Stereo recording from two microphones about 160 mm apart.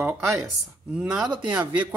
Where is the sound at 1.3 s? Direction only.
30° right (ahead or behind).